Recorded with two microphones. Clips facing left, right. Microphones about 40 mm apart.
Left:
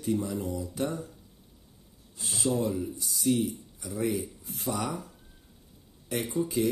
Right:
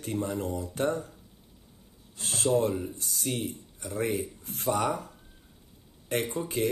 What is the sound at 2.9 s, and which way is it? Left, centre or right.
Speech, right.